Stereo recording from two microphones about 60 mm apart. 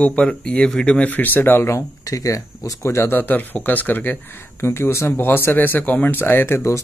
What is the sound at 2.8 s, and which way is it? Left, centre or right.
Speech, left.